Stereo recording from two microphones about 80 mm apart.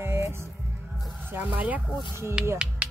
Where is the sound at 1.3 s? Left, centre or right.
Centre.